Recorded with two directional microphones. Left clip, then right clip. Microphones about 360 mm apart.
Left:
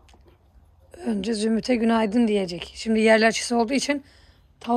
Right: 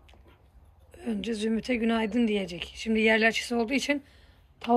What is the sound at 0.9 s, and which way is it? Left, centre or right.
Speech, centre.